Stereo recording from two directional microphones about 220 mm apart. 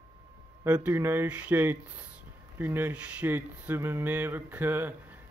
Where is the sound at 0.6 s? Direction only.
5° right (ahead or behind).